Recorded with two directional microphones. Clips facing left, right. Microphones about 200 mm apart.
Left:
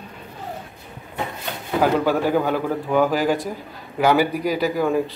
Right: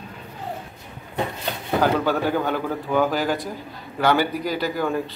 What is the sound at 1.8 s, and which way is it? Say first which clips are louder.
Speech: left 3 dB; 5° left (ahead or behind).